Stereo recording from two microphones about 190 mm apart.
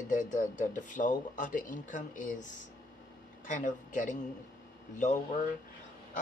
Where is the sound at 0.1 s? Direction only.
45° left (ahead or behind).